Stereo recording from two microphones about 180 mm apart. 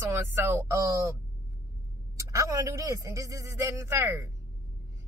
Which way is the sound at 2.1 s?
15° right (ahead or behind).